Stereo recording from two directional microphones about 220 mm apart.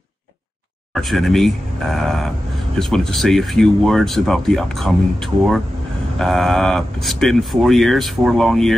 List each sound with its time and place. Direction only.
0.9 s speech: centre (ahead or behind)